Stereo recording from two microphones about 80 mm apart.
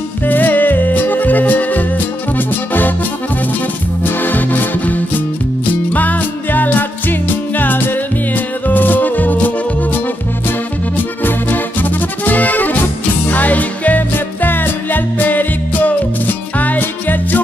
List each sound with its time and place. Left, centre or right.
0.3 s music: left
4.0 s music: left
11.0 s music: left